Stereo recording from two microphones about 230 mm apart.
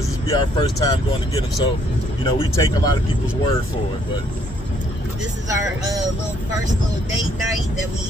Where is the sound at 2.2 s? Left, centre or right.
Left.